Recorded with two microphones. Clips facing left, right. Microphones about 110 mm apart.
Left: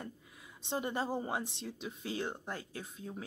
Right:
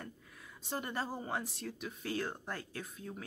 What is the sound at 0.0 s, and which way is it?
A woman's voice, 20° left (ahead or behind).